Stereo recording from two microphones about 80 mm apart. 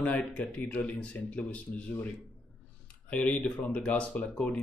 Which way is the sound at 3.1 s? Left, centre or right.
Centre.